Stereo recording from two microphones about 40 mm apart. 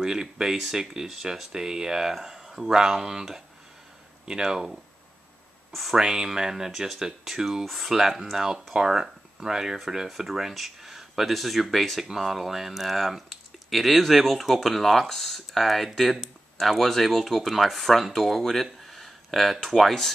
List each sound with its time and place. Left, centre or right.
0.0 s speech: centre
5.7 s speech: centre
5.9 s speech: centre
7.6 s speech: centre
7.9 s speech: centre